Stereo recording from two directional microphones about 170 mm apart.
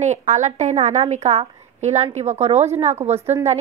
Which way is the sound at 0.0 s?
45° right (ahead or behind).